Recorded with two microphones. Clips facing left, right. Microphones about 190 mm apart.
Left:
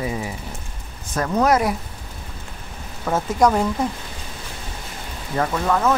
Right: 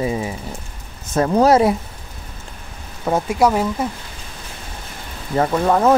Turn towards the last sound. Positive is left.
turn(degrees=-30)  # may be behind; listen again after turning